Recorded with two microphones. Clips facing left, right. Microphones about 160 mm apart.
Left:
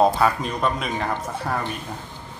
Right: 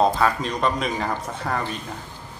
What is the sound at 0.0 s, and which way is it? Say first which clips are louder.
Speech: left 1 dB; 5° left (ahead or behind).